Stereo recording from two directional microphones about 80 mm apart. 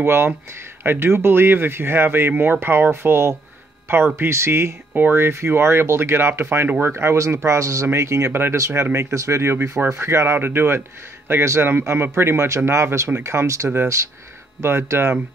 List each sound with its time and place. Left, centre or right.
0.0 s speech: right